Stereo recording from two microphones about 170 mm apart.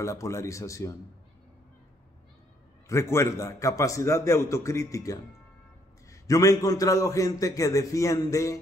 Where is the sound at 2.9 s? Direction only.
15° left (ahead or behind).